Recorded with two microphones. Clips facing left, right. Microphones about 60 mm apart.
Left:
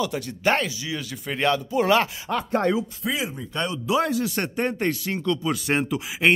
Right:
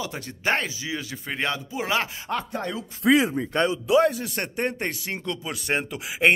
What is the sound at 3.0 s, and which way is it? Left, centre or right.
Speech, right.